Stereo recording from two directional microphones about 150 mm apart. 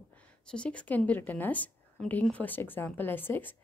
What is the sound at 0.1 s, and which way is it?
Speech, 5° left (ahead or behind).